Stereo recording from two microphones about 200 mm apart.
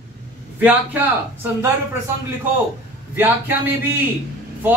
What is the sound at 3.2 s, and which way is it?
Speech, 10° right (ahead or behind).